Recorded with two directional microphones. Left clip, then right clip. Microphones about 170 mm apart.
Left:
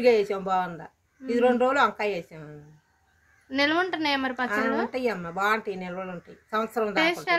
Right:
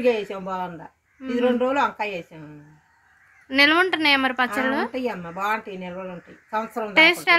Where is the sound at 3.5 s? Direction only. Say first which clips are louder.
Right 7 dB; 10° right (ahead or behind).